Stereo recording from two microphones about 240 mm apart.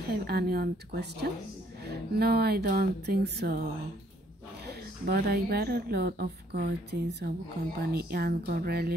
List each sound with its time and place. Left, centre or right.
0.1 s a woman's voice: right
5.0 s a woman's voice: right